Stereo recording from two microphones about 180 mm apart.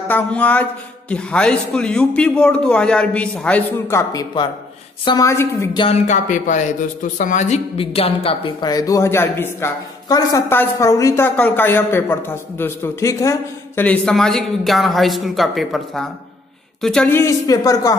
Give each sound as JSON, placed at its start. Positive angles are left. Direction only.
{"t": 0.1, "sound": "a man's voice", "side_deg": 10}
{"t": 5.8, "sound": "a man's voice", "side_deg": 40}